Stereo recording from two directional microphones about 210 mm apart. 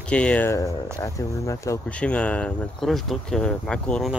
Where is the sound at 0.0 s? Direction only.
5° left (ahead or behind).